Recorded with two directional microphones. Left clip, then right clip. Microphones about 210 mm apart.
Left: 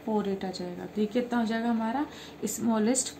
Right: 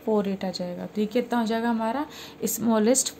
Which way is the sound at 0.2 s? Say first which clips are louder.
Right 4 dB; 40° right (ahead or behind).